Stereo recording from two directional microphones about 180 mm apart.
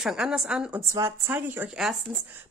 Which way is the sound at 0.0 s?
5° right (ahead or behind).